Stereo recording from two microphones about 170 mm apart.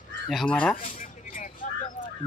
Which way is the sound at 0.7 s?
50° left (ahead or behind).